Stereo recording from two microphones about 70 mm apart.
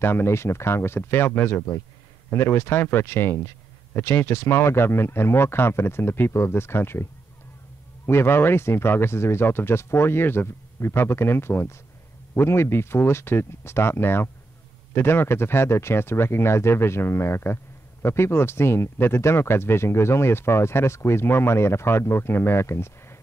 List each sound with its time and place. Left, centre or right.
0.0 s speech: left